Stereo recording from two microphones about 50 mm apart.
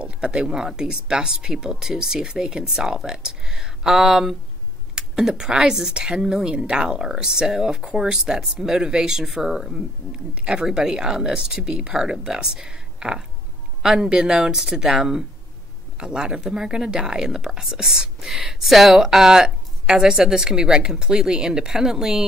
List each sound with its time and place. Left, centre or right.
0.0 s speech: centre
9.8 s speech: centre